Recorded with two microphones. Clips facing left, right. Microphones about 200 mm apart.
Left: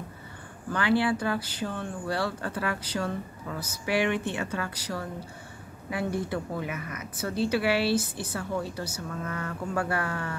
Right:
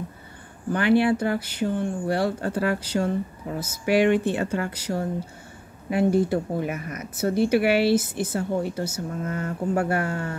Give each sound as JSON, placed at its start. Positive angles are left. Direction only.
{"t": 0.7, "sound": "a woman's voice", "side_deg": -25}
{"t": 7.2, "sound": "speech", "side_deg": -25}